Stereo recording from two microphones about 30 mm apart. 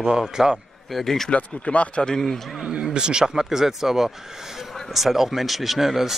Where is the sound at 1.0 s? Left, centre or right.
Centre.